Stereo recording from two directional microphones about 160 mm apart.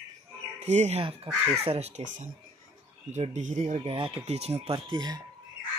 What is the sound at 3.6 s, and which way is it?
Speech, 35° right (ahead or behind).